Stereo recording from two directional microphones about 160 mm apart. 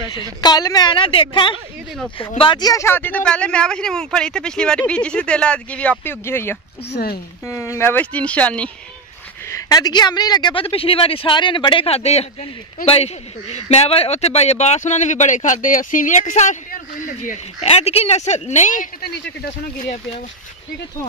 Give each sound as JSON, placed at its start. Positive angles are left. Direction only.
{"t": 0.1, "sound": "a woman's voice", "side_deg": 25}
{"t": 6.9, "sound": "speech", "side_deg": 75}
{"t": 7.4, "sound": "speech", "side_deg": 15}
{"t": 9.5, "sound": "a man's voice", "side_deg": 25}